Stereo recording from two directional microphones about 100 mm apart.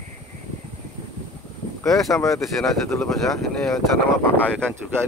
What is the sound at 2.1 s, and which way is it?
Speech, 30° left (ahead or behind).